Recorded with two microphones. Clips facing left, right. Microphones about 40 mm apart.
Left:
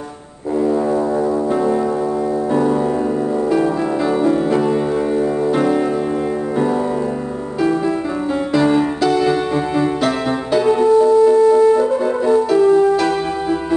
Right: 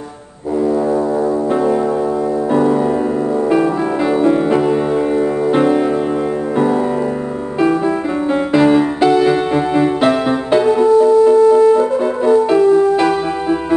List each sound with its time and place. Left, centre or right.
2.5 s music: centre
4.2 s music: right
8.5 s music: right
10.8 s music: centre
12.9 s music: right